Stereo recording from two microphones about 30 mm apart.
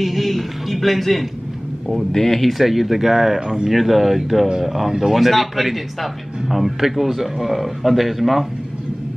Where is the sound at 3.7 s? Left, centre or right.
Centre.